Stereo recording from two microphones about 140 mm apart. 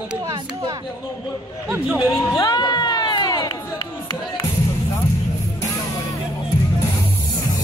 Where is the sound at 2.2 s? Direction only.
30° left (ahead or behind).